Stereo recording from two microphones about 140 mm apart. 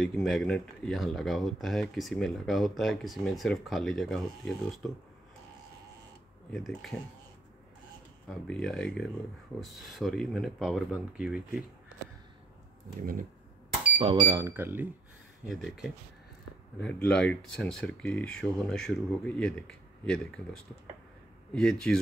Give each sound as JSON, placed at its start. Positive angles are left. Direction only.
{"t": 0.0, "sound": "speech", "side_deg": 0}
{"t": 6.5, "sound": "speech", "side_deg": 0}
{"t": 8.3, "sound": "speech", "side_deg": 5}
{"t": 13.0, "sound": "speech", "side_deg": -90}
{"t": 13.9, "sound": "speech", "side_deg": -40}
{"t": 14.5, "sound": "speech", "side_deg": -15}
{"t": 15.6, "sound": "speech", "side_deg": 0}
{"t": 21.5, "sound": "speech", "side_deg": 5}